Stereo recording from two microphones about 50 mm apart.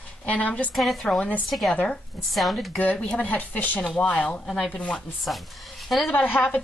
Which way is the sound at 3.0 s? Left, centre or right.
Centre.